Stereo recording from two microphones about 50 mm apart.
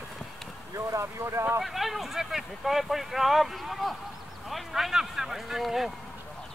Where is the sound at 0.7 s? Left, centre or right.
Right.